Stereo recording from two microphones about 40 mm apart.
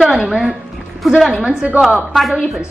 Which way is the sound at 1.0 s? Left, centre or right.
Centre.